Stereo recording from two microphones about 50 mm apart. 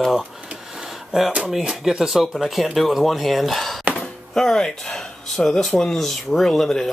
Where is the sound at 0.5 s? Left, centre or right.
Centre.